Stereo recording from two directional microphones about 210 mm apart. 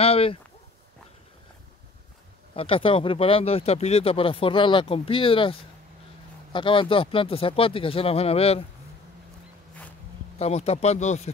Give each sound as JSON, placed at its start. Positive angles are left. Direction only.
{"t": 0.0, "sound": "a sound", "side_deg": 30}
{"t": 2.5, "sound": "speech", "side_deg": 25}
{"t": 10.4, "sound": "speech", "side_deg": 30}